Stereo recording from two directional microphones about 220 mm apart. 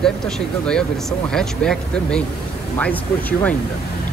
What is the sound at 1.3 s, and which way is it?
Speech, 5° left (ahead or behind).